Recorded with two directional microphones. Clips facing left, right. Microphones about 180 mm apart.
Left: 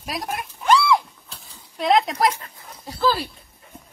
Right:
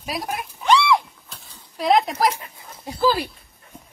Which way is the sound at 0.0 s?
Centre (ahead or behind).